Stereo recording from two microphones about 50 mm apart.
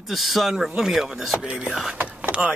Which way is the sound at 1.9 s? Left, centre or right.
Right.